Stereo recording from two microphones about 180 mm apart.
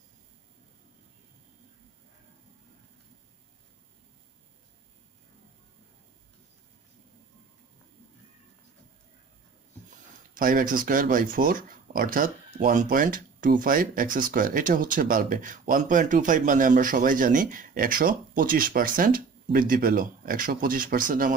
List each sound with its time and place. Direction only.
9.8 s speech: 50° right (ahead or behind)